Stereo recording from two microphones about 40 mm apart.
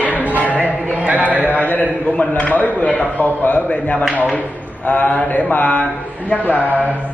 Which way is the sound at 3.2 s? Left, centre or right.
Left.